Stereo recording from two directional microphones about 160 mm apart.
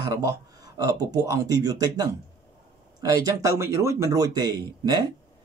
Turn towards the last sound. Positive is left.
turn(degrees=-25)  # may be behind; listen again after turning